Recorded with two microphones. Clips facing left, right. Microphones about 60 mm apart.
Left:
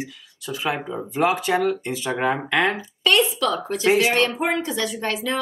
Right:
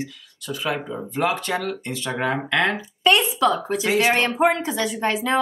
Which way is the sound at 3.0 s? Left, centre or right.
Centre.